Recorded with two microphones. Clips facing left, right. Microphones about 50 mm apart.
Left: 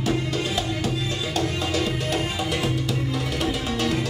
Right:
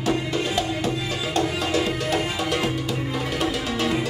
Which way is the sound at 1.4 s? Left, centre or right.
Centre.